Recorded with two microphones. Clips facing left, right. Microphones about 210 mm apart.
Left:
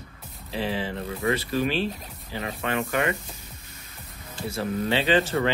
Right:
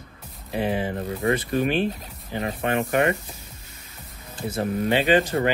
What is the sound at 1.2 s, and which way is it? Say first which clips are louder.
Speech: right 2 dB; 30° right (ahead or behind).